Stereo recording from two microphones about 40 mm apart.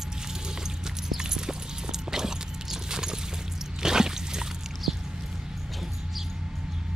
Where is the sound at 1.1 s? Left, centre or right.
Centre.